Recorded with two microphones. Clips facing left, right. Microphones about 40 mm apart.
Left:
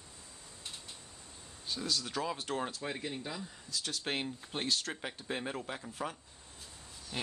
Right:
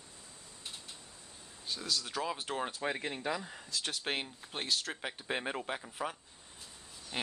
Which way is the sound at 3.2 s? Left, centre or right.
Right.